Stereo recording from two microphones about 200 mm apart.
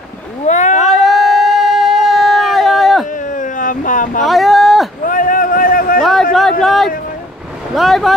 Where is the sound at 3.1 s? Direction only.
40° left (ahead or behind).